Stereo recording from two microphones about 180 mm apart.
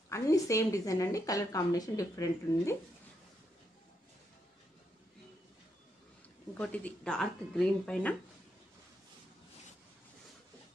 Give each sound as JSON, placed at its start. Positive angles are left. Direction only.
{"t": 0.1, "sound": "a woman's voice", "side_deg": 15}
{"t": 6.5, "sound": "speech", "side_deg": 10}